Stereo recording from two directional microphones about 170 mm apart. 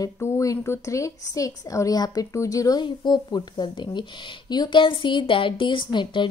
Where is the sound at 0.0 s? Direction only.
20° left (ahead or behind).